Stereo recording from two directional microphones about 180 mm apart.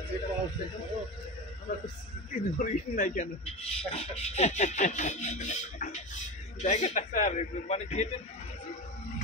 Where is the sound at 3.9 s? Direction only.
35° left (ahead or behind).